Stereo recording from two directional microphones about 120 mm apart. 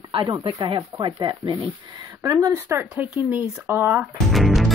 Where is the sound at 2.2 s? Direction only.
30° right (ahead or behind).